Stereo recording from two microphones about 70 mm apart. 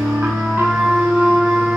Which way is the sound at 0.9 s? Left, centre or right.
Centre.